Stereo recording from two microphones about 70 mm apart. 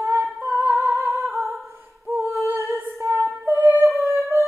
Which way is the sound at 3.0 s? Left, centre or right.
Right.